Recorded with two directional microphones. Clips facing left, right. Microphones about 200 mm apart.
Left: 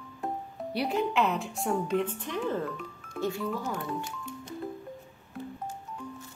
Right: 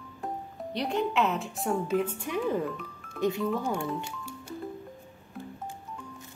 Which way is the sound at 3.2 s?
20° right (ahead or behind).